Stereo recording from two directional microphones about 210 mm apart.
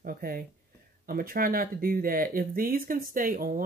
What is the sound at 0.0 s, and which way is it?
Speech, 45° right (ahead or behind).